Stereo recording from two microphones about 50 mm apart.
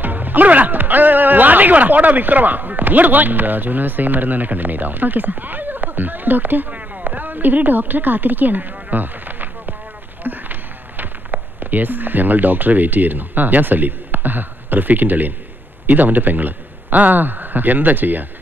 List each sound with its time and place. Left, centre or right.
0.0 s a man's voice: right